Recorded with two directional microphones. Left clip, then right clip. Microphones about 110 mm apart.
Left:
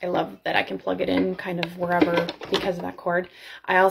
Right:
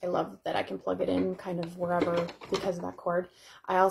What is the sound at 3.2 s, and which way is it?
Speech, 30° right (ahead or behind).